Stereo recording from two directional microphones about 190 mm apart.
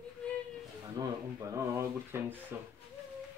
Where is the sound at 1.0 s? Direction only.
20° right (ahead or behind).